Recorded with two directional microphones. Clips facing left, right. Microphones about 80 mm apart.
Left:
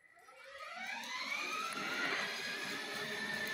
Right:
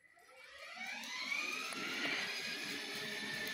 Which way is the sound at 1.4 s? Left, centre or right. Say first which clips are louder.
Left 4 dB; left.